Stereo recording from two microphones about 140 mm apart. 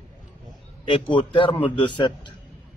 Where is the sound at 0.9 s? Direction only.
35° left (ahead or behind).